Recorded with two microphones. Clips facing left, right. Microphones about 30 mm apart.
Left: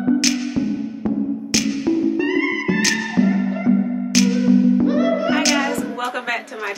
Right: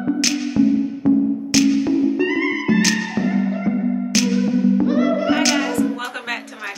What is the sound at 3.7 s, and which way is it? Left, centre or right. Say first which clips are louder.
Music: left 8 dB; right.